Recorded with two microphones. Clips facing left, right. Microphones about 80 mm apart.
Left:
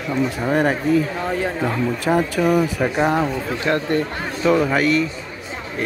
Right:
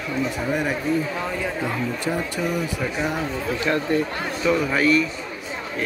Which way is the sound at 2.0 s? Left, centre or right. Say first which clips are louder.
Left 10 dB; left.